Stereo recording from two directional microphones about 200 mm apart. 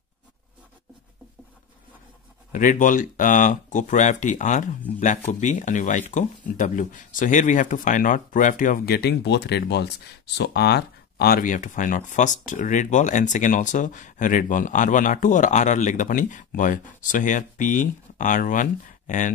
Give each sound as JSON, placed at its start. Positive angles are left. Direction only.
{"t": 2.5, "sound": "speech", "side_deg": 40}